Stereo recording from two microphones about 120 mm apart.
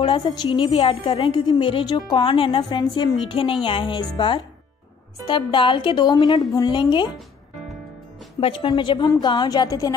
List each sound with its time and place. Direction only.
0.0 s a woman's voice: 35° left (ahead or behind)
0.5 s a woman's voice: 50° left (ahead or behind)
2.0 s a woman's voice: 35° left (ahead or behind)
5.2 s a woman's voice: 45° left (ahead or behind)
8.4 s a woman's voice: 50° left (ahead or behind); by 9.9 s 30° left (ahead or behind)